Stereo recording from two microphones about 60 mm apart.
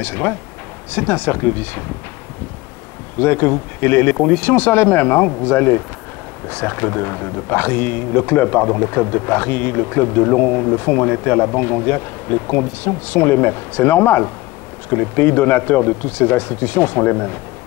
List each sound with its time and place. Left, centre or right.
0.0 s a man's voice: left
3.2 s a man's voice: left